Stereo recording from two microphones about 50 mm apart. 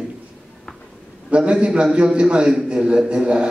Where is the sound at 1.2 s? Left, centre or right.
Centre.